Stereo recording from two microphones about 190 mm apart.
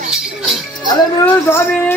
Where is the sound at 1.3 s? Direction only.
10° left (ahead or behind).